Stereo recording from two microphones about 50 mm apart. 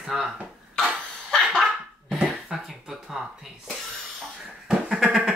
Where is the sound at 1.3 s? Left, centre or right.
Centre.